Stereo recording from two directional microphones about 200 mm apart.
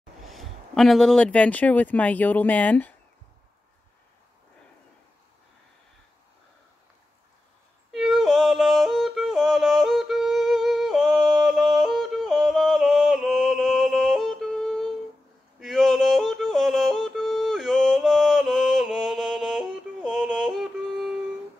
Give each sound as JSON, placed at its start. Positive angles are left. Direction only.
{"t": 0.2, "sound": "speech", "side_deg": 0}
{"t": 7.9, "sound": "yodeling", "side_deg": 0}